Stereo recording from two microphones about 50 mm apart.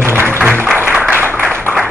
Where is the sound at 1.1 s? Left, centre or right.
Right.